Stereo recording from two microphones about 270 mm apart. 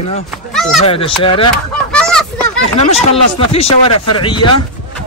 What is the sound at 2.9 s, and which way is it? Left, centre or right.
Speech, left.